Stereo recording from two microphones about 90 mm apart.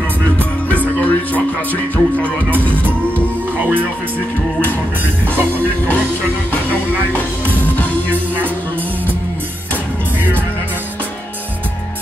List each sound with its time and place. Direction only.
0.7 s music: 15° left (ahead or behind)
3.5 s music: 20° right (ahead or behind)
5.3 s music: 20° left (ahead or behind)